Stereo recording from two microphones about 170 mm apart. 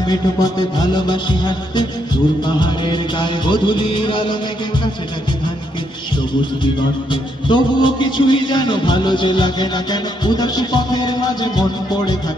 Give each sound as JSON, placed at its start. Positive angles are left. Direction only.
{"t": 0.1, "sound": "a man's voice", "side_deg": 25}
{"t": 7.4, "sound": "a man's voice", "side_deg": 25}